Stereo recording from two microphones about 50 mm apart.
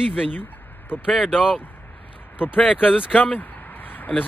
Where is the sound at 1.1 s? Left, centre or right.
Centre.